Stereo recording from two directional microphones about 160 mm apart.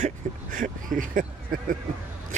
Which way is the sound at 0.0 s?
55° right (ahead or behind).